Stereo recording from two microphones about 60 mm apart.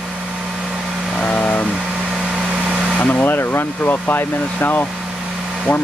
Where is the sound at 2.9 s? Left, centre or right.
Left.